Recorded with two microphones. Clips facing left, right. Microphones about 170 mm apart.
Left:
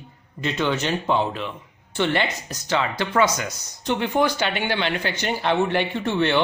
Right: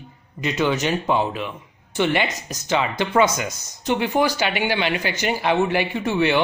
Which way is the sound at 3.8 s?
5° right (ahead or behind).